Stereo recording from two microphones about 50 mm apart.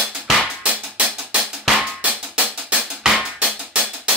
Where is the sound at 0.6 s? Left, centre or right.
Right.